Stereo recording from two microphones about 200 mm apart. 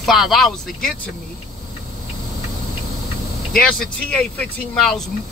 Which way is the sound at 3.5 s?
5° left (ahead or behind).